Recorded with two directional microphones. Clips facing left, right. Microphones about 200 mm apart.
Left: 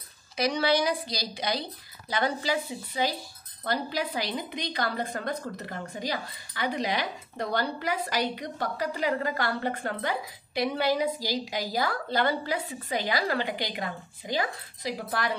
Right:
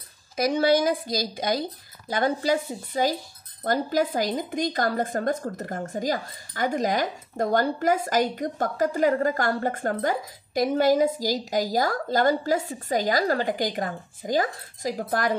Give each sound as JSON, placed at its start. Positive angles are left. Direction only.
{"t": 0.4, "sound": "speech", "side_deg": -50}